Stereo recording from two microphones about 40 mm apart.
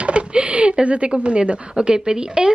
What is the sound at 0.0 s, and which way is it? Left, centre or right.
Speech, right.